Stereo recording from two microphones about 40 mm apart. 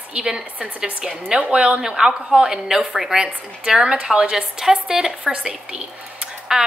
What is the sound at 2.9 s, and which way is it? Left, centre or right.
Speech, centre.